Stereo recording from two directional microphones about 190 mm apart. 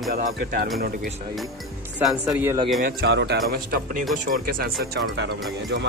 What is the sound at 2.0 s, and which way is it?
Speech, centre (ahead or behind).